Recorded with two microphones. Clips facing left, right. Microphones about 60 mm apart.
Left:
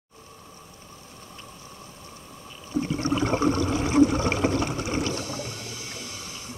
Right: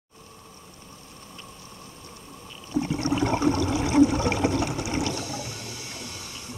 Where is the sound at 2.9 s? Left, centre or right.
Left.